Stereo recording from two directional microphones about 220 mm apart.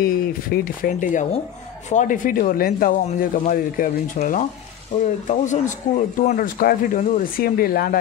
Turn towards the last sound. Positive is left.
turn(degrees=45)  # may be behind; listen again after turning